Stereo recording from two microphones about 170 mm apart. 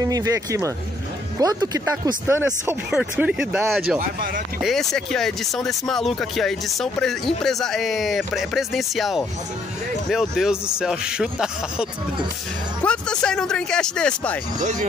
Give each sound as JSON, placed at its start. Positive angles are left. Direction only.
{"t": 0.0, "sound": "speech", "side_deg": -20}
{"t": 14.6, "sound": "speech", "side_deg": -45}